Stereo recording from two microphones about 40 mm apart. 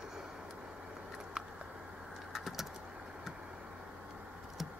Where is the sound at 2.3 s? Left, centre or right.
Centre.